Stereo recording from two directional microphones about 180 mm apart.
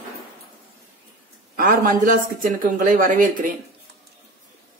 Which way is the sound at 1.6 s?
50° right (ahead or behind).